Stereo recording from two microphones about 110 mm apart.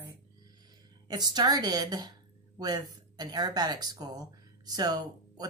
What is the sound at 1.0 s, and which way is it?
Speech, 40° right (ahead or behind).